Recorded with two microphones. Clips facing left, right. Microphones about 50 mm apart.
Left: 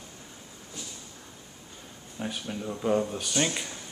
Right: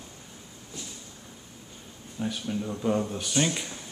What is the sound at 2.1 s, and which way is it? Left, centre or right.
Speech, centre.